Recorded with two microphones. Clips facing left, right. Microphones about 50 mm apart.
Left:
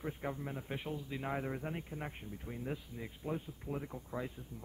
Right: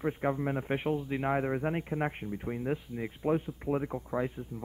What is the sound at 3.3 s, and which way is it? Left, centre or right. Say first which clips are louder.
A man's voice: right 11 dB; right.